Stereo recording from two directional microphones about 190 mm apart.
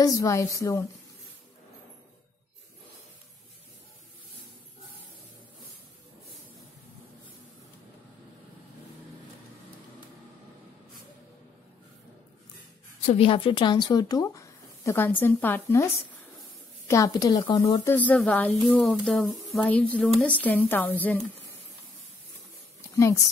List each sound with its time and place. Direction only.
0.0 s speech: 15° left (ahead or behind)
13.0 s speech: 30° left (ahead or behind); by 21.2 s 10° left (ahead or behind)